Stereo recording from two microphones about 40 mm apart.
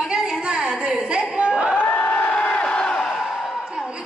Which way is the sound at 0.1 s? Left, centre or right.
Centre.